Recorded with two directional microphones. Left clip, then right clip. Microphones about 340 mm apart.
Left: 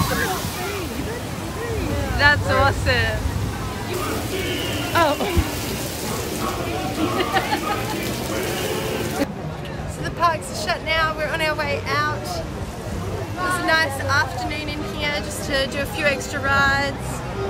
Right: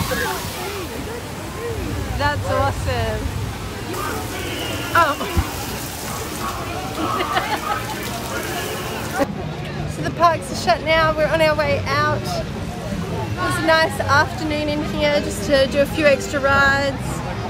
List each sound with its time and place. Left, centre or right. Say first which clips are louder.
2.1 s speech: left 4 dB; centre
4.9 s a woman's voice: right 2 dB; centre
10.2 s a woman's voice: right 4 dB; centre
13.7 s a woman's voice: right 5 dB; centre